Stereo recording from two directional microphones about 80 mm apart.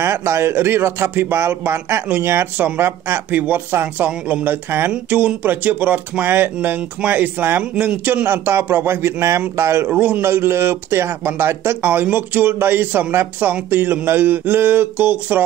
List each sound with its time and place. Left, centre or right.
0.0 s a man's voice: right
9.8 s a man's voice: centre
10.2 s a man's voice: right